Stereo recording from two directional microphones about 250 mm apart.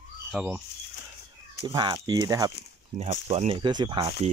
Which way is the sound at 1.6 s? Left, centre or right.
Centre.